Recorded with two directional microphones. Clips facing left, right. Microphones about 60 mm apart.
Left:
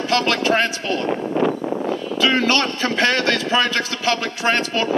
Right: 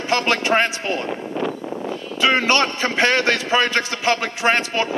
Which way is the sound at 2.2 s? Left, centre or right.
Right.